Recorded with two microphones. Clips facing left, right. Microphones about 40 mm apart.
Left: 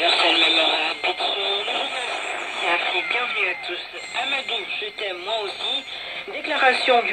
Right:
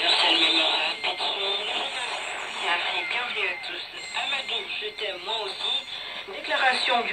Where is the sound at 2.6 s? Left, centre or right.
Left.